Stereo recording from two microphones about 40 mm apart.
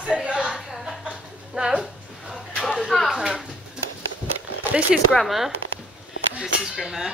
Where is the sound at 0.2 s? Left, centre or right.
Right.